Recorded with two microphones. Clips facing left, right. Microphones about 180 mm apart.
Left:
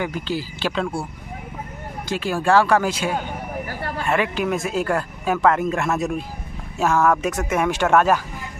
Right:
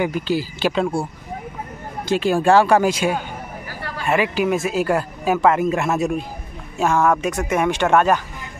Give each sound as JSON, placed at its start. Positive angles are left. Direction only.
{"t": 0.0, "sound": "speech", "side_deg": -15}
{"t": 2.0, "sound": "speech", "side_deg": -20}